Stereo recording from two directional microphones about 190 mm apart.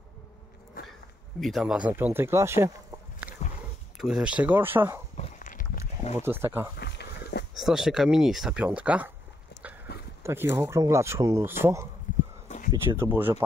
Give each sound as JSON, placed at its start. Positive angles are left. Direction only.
{"t": 1.4, "sound": "speech", "side_deg": 0}
{"t": 4.0, "sound": "speech", "side_deg": -5}
{"t": 5.1, "sound": "a sound", "side_deg": 40}
{"t": 6.1, "sound": "speech", "side_deg": -10}
{"t": 6.8, "sound": "a sound", "side_deg": 60}
{"t": 7.5, "sound": "speech", "side_deg": 0}
{"t": 9.9, "sound": "dog", "side_deg": 55}
{"t": 10.2, "sound": "speech", "side_deg": -10}
{"t": 12.1, "sound": "a sound", "side_deg": 45}
{"t": 12.7, "sound": "speech", "side_deg": -15}